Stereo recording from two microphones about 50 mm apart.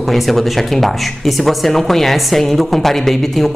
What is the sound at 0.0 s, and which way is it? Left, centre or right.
Speech, centre.